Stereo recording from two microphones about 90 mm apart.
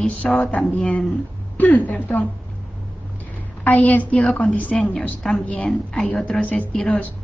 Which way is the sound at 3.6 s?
15° left (ahead or behind).